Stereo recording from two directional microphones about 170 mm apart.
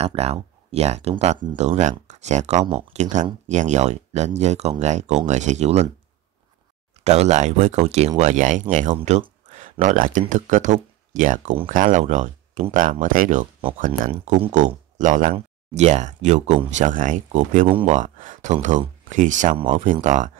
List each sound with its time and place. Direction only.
0.0 s speech: 35° right (ahead or behind)
7.0 s speech: 40° right (ahead or behind)
9.5 s a sound: 45° right (ahead or behind)
10.3 s speech: 45° right (ahead or behind)